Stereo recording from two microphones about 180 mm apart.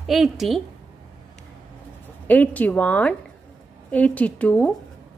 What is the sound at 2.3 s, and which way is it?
A woman's voice, 10° left (ahead or behind).